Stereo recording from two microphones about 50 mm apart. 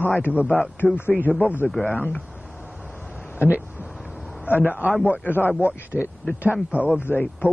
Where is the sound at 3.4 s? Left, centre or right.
Right.